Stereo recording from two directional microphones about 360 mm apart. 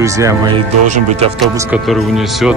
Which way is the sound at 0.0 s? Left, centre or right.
Centre.